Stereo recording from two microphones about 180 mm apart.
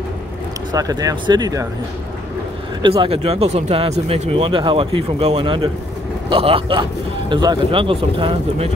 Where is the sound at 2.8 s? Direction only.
30° right (ahead or behind).